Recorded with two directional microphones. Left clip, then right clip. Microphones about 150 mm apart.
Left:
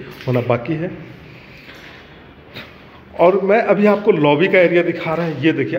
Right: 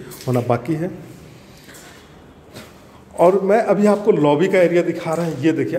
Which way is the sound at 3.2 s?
20° right (ahead or behind).